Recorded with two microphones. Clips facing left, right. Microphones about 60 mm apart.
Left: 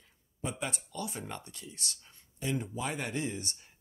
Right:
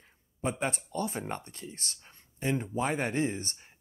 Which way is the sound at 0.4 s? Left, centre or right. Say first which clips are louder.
Right 5 dB; right.